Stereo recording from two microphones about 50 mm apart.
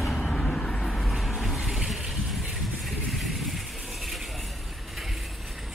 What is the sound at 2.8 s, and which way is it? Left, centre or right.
Vehicle, centre.